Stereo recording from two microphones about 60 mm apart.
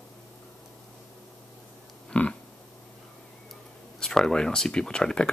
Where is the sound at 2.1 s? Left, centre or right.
Left.